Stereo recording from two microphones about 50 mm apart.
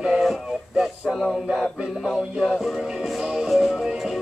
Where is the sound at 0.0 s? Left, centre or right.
Centre.